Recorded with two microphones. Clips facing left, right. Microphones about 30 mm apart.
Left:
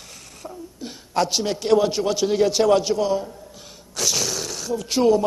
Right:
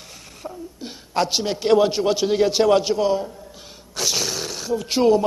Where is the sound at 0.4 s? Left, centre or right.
Centre.